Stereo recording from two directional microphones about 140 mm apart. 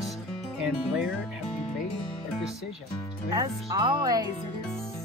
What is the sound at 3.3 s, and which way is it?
Speech, 25° right (ahead or behind).